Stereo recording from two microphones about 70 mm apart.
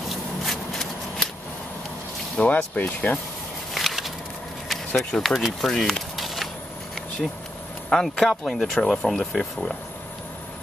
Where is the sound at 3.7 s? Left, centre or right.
Centre.